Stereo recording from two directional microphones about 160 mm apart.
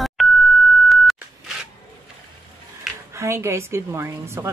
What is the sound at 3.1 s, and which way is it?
A woman's voice, 15° right (ahead or behind).